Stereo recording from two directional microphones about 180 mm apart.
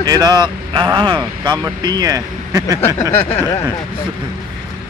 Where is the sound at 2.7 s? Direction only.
10° left (ahead or behind).